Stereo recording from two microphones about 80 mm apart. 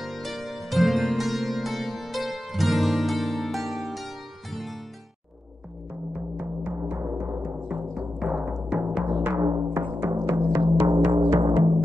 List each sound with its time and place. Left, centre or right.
0.0 s music: centre
6.1 s music: right
7.6 s timpani: right
8.3 s music: centre
9.0 s music: right
10.5 s music: right
11.2 s music: right